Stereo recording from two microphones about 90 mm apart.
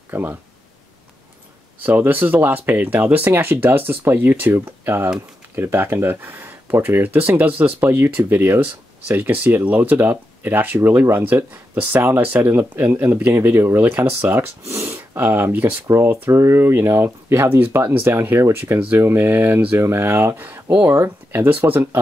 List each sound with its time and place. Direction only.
0.1 s speech: 20° right (ahead or behind)
1.8 s speech: 20° right (ahead or behind)